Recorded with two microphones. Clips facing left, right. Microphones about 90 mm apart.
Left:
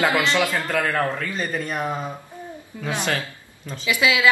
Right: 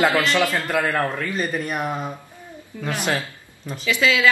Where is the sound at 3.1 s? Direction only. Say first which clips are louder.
Right 1 dB; 15° right (ahead or behind).